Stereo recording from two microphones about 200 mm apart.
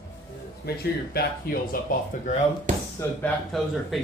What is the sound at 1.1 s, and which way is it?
Speech, 50° left (ahead or behind).